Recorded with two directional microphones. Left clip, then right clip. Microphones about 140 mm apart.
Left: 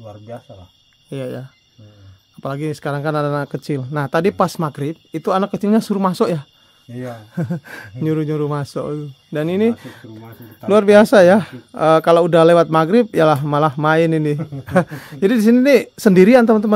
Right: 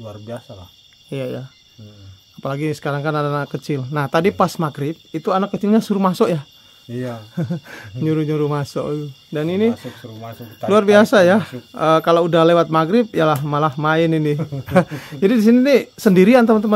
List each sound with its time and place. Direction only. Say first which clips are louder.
1.1 s speech: right 1 dB; 15° left (ahead or behind)
7.3 s speech: left 1 dB; 30° left (ahead or behind); by 9.0 s 15° left (ahead or behind)
9.3 s speech: left 1 dB; 35° left (ahead or behind)